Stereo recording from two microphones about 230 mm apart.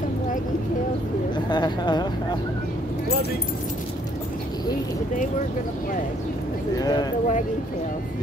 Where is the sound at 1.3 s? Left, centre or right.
Centre.